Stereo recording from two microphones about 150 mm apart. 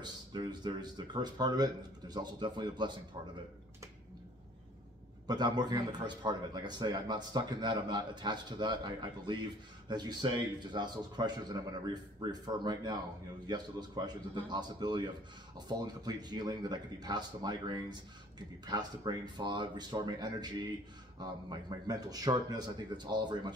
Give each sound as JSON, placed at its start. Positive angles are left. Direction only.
{"t": 0.0, "sound": "a man's voice", "side_deg": -30}
{"t": 5.2, "sound": "a man's voice", "side_deg": -25}